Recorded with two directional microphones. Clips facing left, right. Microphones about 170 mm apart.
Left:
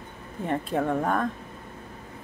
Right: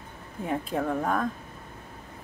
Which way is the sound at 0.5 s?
Centre (ahead or behind).